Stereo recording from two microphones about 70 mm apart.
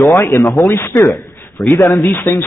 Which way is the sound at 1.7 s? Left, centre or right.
Centre.